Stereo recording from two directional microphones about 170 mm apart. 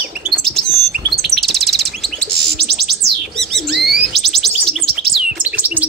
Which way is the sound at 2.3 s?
70° right (ahead or behind).